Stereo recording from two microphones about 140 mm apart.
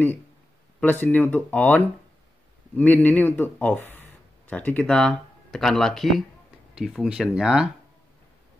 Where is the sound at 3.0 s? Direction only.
15° left (ahead or behind); by 7.7 s 5° right (ahead or behind).